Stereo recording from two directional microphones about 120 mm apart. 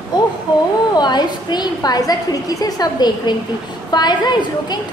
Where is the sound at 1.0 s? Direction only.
35° left (ahead or behind).